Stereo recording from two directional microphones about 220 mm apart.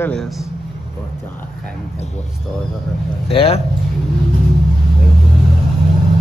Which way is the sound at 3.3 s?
25° left (ahead or behind).